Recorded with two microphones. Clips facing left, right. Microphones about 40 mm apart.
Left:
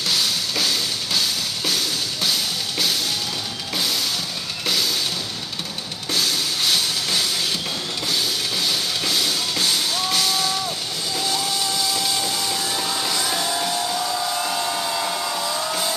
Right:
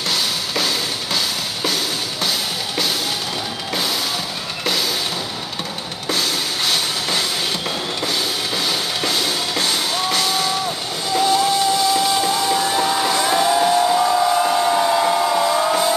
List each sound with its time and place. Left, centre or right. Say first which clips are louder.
0.1 s music: right 1 dB; centre
6.0 s music: right 2 dB; centre
8.6 s music: right 2 dB; centre
11.1 s train: right 10 dB; right
11.9 s music: right 7 dB; centre